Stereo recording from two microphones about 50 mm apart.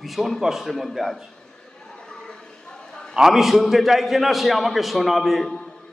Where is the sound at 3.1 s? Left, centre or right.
Centre.